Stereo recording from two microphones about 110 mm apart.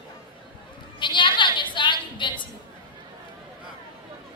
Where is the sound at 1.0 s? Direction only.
45° left (ahead or behind).